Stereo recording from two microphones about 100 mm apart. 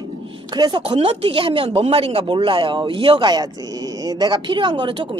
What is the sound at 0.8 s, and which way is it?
Speech, 70° right (ahead or behind).